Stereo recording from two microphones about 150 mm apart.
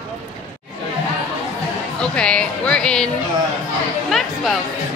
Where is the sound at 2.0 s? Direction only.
5° left (ahead or behind).